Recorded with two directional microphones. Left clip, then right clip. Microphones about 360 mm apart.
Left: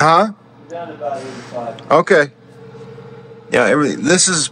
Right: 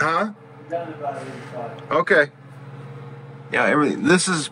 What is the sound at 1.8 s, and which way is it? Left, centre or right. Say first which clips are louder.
Speech: left 6 dB; centre.